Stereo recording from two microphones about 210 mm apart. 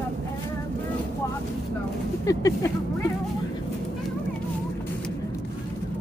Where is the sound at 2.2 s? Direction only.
15° left (ahead or behind).